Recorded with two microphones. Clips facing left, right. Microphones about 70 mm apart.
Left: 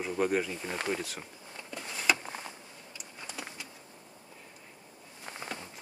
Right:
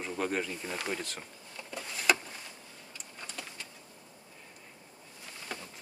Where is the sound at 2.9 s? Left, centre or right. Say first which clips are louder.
Left 1 dB; centre.